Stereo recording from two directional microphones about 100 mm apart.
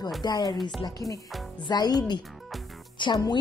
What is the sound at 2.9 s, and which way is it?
Music, 50° left (ahead or behind).